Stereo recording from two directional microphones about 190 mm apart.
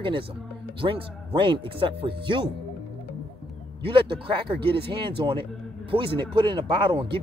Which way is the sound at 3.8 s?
25° right (ahead or behind).